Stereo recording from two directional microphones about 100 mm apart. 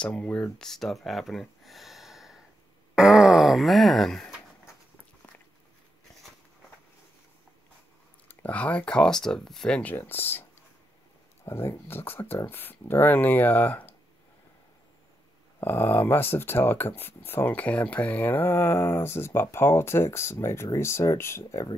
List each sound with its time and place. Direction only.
0.0 s speech: 10° left (ahead or behind)
0.7 s speech: 5° left (ahead or behind)
8.3 s speech: 15° left (ahead or behind)
11.4 s speech: 30° left (ahead or behind)
15.6 s speech: 20° left (ahead or behind)